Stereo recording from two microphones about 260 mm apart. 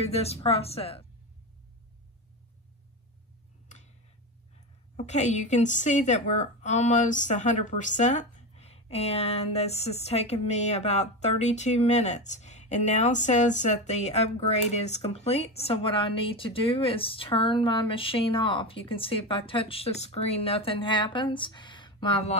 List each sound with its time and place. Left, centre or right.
0.0 s a woman's voice: left
4.9 s a woman's voice: left